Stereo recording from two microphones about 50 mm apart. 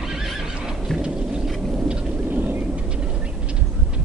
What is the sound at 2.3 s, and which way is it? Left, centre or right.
Vehicle, right.